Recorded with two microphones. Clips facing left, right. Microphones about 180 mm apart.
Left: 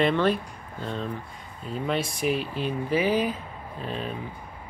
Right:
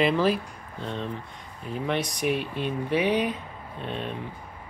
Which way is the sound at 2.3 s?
60° right (ahead or behind).